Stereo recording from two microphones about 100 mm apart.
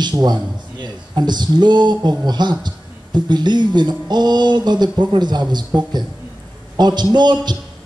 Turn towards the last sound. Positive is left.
turn(degrees=-45)  # may be behind; listen again after turning